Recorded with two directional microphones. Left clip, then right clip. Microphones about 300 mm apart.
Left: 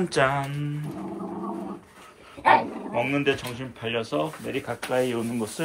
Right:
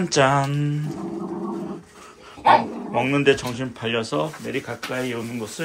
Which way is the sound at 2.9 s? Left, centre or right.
Centre.